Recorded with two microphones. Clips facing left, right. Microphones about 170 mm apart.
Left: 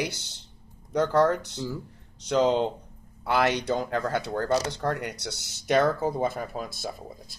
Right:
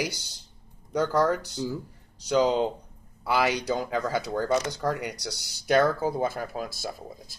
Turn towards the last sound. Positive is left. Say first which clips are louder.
# even
turn(degrees=0)  # may be behind; listen again after turning